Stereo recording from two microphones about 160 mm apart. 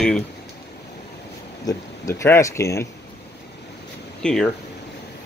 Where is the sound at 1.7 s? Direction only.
20° left (ahead or behind).